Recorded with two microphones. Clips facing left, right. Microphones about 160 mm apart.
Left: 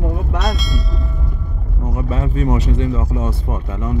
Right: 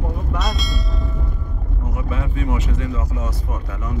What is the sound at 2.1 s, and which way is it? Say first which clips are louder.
Speech: left 6 dB; 40° left (ahead or behind).